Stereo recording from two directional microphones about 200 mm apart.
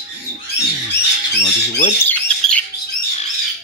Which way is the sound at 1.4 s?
35° left (ahead or behind).